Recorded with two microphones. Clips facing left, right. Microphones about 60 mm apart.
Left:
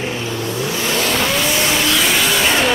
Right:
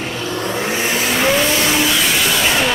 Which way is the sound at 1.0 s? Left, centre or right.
Centre.